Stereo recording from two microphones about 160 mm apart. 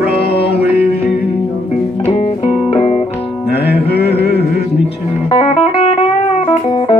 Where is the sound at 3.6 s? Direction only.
90° left.